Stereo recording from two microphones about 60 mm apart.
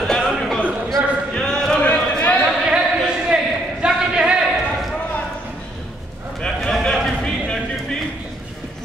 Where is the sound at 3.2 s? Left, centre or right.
Centre.